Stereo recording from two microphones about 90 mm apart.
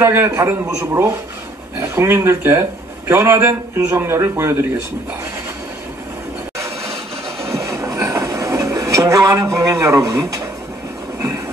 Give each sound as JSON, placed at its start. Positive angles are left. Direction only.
{"t": 0.0, "sound": "a man's voice", "side_deg": -30}
{"t": 7.4, "sound": "train", "side_deg": -35}